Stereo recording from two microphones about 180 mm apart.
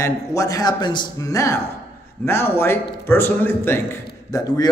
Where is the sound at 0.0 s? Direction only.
15° left (ahead or behind).